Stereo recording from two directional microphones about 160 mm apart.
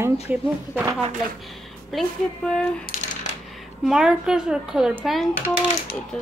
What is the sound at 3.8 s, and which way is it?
Speech, 5° right (ahead or behind).